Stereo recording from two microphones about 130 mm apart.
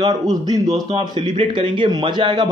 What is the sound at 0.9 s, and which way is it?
Speech, 45° right (ahead or behind).